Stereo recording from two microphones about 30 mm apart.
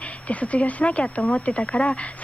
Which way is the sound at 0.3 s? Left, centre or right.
Left.